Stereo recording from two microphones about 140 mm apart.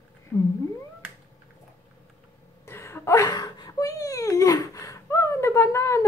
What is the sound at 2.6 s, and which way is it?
Whimper, 20° left (ahead or behind).